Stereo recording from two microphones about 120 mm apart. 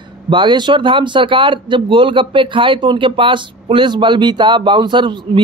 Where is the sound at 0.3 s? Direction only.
40° right (ahead or behind).